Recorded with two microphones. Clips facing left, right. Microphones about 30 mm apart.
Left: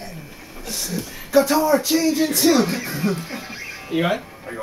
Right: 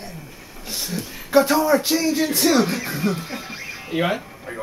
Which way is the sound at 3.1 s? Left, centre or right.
Centre.